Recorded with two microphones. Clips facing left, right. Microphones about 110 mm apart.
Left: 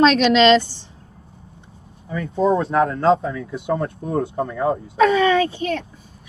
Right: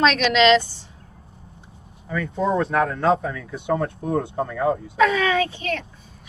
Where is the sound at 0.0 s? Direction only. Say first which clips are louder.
Left 4 dB; 30° left (ahead or behind).